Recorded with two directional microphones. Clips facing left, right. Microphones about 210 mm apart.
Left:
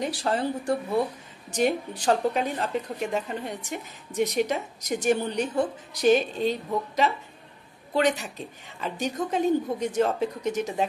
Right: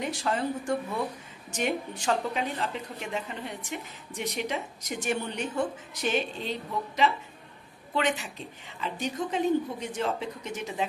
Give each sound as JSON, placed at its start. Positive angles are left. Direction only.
{"t": 0.0, "sound": "a woman's voice", "side_deg": 35}
{"t": 7.9, "sound": "a woman's voice", "side_deg": 40}